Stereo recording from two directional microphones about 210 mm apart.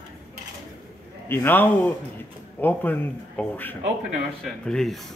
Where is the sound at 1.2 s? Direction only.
10° left (ahead or behind).